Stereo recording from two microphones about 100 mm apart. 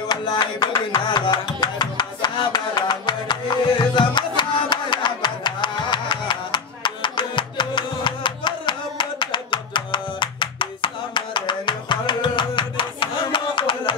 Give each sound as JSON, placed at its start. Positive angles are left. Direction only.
{"t": 0.1, "sound": "music", "side_deg": 45}